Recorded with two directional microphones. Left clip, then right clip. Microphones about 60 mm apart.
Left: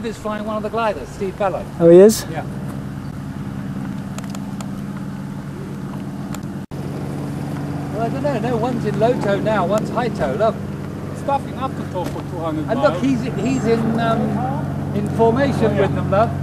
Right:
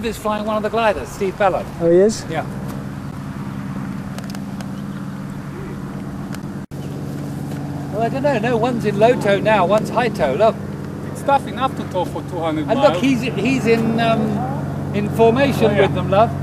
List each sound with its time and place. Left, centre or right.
0.0 s speech: right
1.8 s speech: left
8.0 s speech: right